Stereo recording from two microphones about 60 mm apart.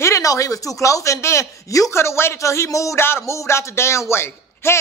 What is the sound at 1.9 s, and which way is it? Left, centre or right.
Speech, left.